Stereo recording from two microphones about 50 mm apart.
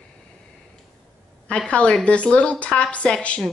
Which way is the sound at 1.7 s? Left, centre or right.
Left.